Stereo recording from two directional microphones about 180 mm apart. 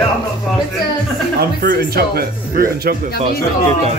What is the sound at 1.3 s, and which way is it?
Speech, 60° right (ahead or behind).